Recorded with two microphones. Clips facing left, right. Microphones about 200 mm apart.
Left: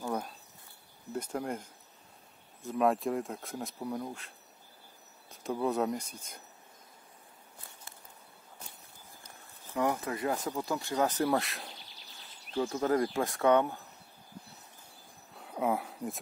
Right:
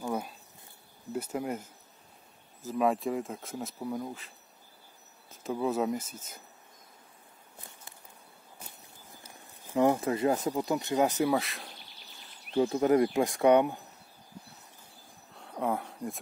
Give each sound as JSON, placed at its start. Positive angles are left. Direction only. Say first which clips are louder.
{"t": 0.0, "sound": "insect", "louder": "right 1 dB", "side_deg": -5}
{"t": 1.1, "sound": "speech", "louder": "right 2 dB", "side_deg": -5}
{"t": 5.3, "sound": "speech", "louder": "right 1 dB", "side_deg": 0}
{"t": 9.8, "sound": "speech", "louder": "right 6 dB", "side_deg": -25}
{"t": 11.2, "sound": "speech", "louder": "right 1 dB", "side_deg": 0}
{"t": 12.5, "sound": "speech", "louder": "right 5 dB", "side_deg": -20}
{"t": 15.3, "sound": "a sound", "louder": "even", "side_deg": 5}